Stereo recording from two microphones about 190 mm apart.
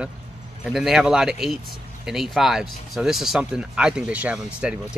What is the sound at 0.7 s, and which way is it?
Speech, centre (ahead or behind).